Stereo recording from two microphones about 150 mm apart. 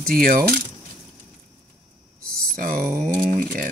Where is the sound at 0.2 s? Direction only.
75° right (ahead or behind).